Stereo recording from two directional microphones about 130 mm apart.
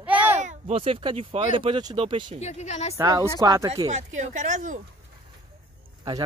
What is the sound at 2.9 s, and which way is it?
Speech, 25° right (ahead or behind).